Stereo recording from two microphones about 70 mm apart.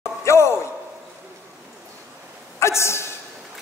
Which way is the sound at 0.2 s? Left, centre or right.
Left.